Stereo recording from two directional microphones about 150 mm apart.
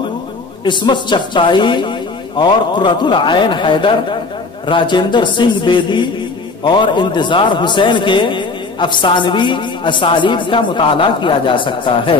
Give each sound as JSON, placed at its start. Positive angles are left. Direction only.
{"t": 0.7, "sound": "a man's voice", "side_deg": 30}